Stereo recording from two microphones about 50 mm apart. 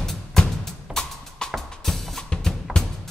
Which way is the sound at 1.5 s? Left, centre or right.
Centre.